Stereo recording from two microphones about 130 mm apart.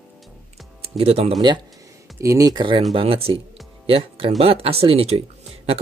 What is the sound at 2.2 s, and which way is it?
Speech, 25° right (ahead or behind).